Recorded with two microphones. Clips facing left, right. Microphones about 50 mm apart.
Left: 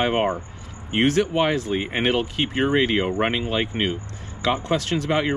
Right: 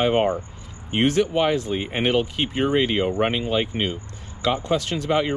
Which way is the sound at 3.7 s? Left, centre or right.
Left.